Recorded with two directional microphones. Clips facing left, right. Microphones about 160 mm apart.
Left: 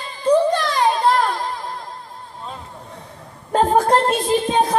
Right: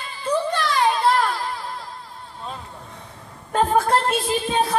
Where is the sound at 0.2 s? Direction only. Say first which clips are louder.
Left 7 dB; 35° left (ahead or behind).